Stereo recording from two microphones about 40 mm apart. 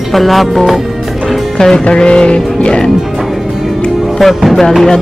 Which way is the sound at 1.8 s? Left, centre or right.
Left.